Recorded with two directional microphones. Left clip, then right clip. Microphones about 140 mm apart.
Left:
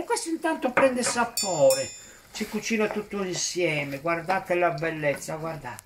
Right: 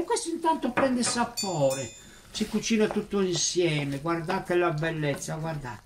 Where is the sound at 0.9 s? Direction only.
25° left (ahead or behind).